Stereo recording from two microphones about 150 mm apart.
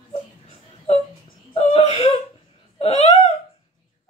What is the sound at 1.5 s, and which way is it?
Whimper, 45° left (ahead or behind).